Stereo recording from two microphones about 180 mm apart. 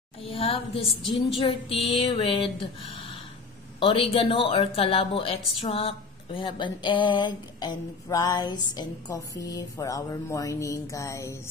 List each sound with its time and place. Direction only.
0.3 s a woman's voice: 30° left (ahead or behind)
1.4 s a sound: 30° left (ahead or behind)
3.8 s a woman's voice: 30° left (ahead or behind)